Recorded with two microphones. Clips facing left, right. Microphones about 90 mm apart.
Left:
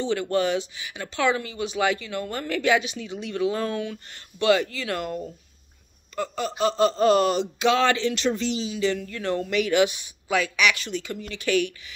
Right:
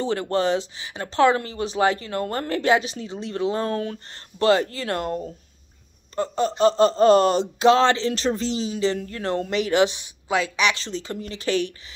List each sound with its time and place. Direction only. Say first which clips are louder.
0.0 s speech: right 1 dB; 35° right (ahead or behind)